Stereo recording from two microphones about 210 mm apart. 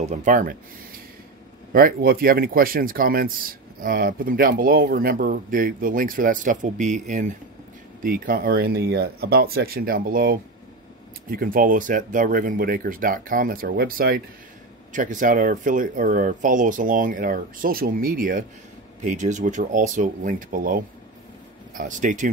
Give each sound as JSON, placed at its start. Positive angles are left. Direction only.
{"t": 0.0, "sound": "speech", "side_deg": -35}
{"t": 1.7, "sound": "speech", "side_deg": -45}